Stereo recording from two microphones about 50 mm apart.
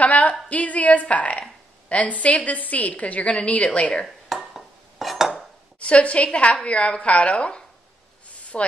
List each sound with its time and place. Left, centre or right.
0.0 s a woman's voice: left
4.3 s a sound: centre
5.8 s a woman's voice: left